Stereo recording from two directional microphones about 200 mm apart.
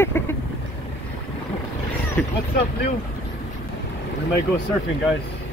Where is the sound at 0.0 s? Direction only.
10° left (ahead or behind).